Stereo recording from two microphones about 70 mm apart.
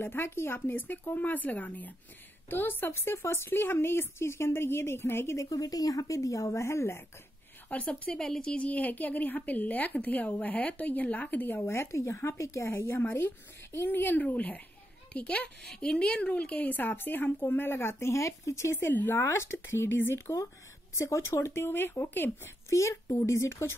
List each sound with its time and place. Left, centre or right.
0.0 s speech: left
7.7 s speech: centre
11.6 s speech: left
22.7 s speech: left